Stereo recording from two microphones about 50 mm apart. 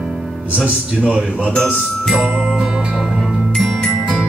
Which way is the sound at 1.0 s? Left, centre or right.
Right.